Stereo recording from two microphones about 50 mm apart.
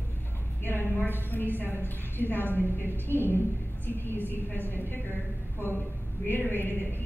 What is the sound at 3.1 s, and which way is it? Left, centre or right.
A woman's voice, left.